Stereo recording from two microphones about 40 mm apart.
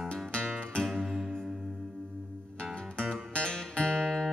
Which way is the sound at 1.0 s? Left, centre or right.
Centre.